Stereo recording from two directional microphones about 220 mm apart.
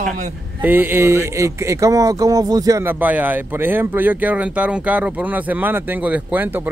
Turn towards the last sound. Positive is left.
turn(degrees=-10)  # may be behind; listen again after turning